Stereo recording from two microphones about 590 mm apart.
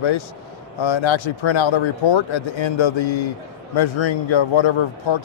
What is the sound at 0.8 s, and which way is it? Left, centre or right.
Speech, left.